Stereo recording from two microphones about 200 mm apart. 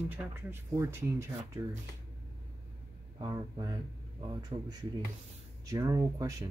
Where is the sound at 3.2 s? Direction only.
15° right (ahead or behind).